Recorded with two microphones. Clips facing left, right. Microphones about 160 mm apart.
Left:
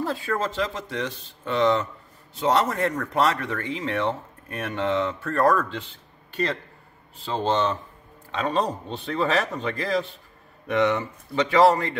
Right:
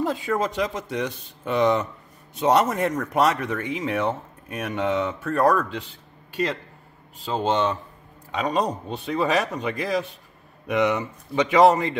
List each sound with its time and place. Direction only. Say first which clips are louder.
0.0 s speech: right 2 dB; 15° right (ahead or behind)
4.6 s speech: right 1 dB; 5° right (ahead or behind)
8.8 s speech: right 1 dB; centre (ahead or behind)
9.4 s speech: right 1 dB; 15° right (ahead or behind)